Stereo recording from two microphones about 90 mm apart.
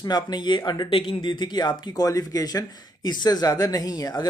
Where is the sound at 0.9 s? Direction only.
70° left (ahead or behind).